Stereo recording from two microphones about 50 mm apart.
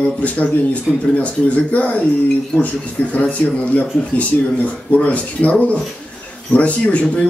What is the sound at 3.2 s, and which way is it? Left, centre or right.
A man's voice, left.